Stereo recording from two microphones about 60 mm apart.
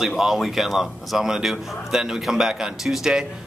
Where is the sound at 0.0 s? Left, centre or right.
Centre.